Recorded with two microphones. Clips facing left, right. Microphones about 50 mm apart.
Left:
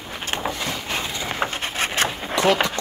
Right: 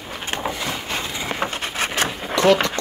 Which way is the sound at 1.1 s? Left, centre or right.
Centre.